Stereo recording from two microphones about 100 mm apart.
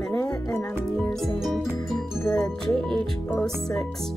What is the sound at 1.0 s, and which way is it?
Music, 5° left (ahead or behind).